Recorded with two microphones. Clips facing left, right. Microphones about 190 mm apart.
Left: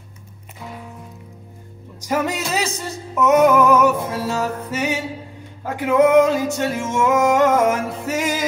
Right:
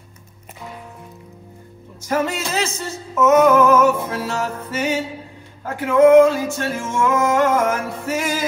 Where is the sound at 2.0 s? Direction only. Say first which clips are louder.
Even; 15° left (ahead or behind).